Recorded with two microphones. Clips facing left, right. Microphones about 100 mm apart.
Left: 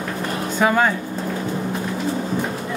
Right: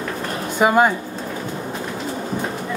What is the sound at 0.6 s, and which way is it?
Speech, 15° right (ahead or behind).